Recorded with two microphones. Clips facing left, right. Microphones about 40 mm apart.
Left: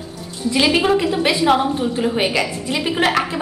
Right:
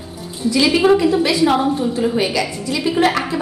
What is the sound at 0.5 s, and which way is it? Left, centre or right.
A woman's voice, left.